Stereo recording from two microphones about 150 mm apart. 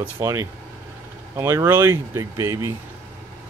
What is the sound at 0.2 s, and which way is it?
Speech, 20° right (ahead or behind).